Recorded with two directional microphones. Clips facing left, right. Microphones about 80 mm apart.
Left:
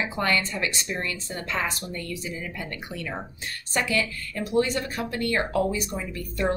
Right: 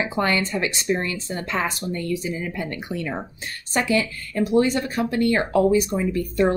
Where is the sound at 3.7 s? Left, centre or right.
Right.